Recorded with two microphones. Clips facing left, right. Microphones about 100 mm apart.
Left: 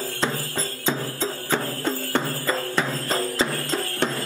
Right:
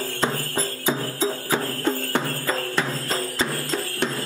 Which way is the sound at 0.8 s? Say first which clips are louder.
Right 2 dB; 10° right (ahead or behind).